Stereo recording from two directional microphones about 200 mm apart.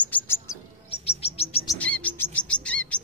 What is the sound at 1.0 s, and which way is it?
Chirp, 30° left (ahead or behind).